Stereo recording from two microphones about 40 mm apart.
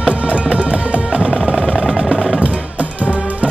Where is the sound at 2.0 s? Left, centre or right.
Centre.